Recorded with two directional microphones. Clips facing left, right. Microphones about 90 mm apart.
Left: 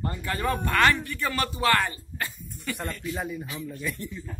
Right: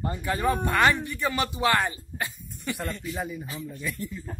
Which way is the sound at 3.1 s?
Centre (ahead or behind).